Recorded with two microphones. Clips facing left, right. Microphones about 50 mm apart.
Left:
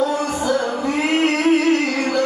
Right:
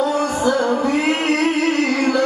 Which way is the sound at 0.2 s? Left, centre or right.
Right.